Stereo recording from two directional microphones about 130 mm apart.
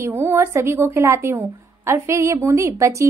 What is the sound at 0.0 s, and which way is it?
A woman's voice, 20° right (ahead or behind).